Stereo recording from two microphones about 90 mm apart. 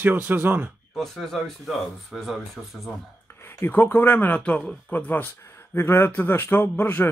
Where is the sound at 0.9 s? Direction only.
Centre (ahead or behind).